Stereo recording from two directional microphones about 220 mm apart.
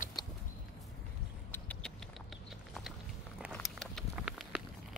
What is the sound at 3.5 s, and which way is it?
Walk, 5° left (ahead or behind).